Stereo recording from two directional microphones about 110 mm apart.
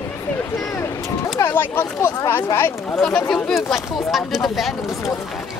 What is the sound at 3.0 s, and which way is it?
Speech, 5° left (ahead or behind).